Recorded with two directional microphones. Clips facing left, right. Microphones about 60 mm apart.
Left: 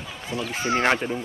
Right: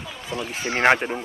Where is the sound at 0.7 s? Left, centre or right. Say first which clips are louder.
Right 4 dB; right.